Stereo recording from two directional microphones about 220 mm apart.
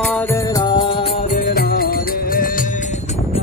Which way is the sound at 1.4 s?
45° left (ahead or behind).